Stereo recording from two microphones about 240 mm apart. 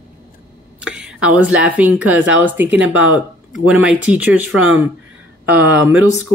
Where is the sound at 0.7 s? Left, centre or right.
Centre.